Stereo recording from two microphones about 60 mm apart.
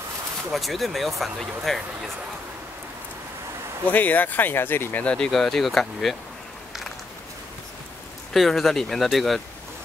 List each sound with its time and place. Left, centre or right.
0.5 s speech: centre
3.8 s speech: left
5.0 s speech: centre
5.3 s speech: centre
8.3 s speech: centre